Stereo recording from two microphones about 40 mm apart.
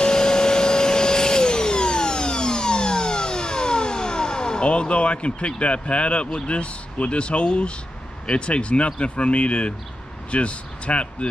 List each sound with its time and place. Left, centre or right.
0.0 s vacuum cleaner: centre
8.3 s speech: left